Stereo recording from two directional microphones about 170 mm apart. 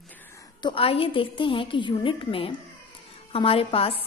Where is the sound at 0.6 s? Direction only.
30° left (ahead or behind).